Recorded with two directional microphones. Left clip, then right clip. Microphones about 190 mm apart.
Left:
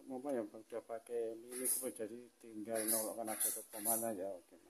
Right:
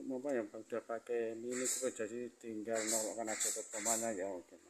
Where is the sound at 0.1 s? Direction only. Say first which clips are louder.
Right 2 dB; 15° right (ahead or behind).